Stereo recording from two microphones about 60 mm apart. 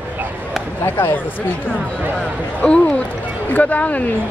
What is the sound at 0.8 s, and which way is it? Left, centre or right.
Speech, left.